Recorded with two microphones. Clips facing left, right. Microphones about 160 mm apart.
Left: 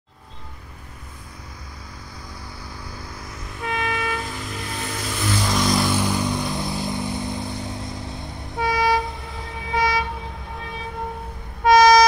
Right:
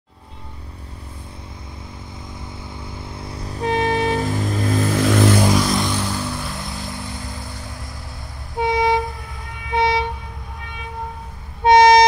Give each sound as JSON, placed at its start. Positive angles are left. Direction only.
{"t": 2.7, "sound": "train", "side_deg": -25}
{"t": 5.0, "sound": "vehicle", "side_deg": -90}
{"t": 5.5, "sound": "vehicle", "side_deg": 0}
{"t": 5.9, "sound": "vehicle", "side_deg": 10}
{"t": 8.5, "sound": "vehicle", "side_deg": -25}
{"t": 9.8, "sound": "train", "side_deg": -25}
{"t": 11.6, "sound": "vehicle", "side_deg": -25}